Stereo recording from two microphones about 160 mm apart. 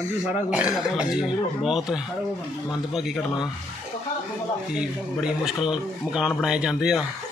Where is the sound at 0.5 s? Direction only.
5° right (ahead or behind).